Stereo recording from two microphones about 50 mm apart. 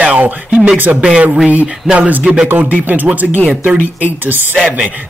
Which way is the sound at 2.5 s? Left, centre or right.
Right.